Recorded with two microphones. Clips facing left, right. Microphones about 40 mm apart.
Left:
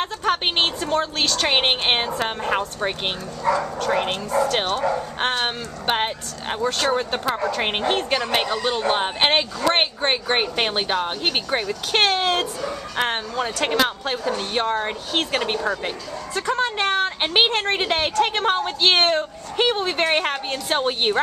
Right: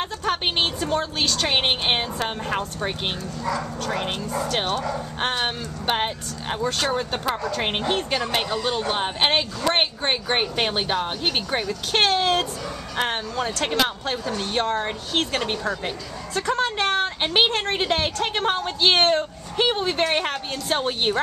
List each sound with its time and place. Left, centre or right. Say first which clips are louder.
0.0 s a woman's voice: left 2 dB; centre
3.9 s a woman's voice: left 5 dB; centre